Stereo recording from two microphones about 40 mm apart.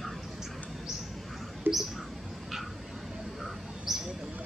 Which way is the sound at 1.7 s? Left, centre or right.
Right.